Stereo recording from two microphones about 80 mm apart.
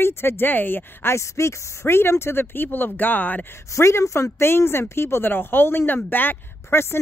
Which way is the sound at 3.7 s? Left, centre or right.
Left.